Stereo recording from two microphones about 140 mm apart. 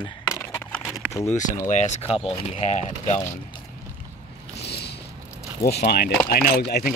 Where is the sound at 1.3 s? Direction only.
60° left (ahead or behind).